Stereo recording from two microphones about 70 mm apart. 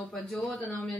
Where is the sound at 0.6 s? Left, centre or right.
Left.